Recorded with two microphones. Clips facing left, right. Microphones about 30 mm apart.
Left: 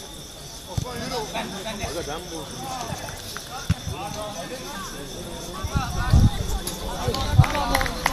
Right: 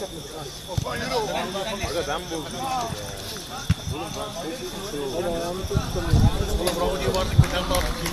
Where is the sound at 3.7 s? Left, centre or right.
Centre.